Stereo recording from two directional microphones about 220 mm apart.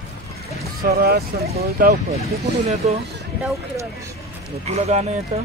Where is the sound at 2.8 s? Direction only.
30° right (ahead or behind).